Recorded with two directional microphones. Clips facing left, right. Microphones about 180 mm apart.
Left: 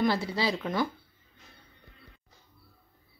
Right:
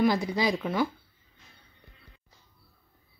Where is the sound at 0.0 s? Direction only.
15° right (ahead or behind).